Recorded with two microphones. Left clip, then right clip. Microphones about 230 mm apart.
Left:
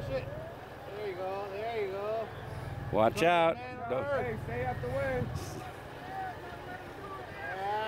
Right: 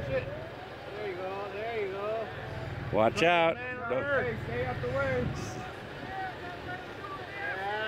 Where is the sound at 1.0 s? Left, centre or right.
Right.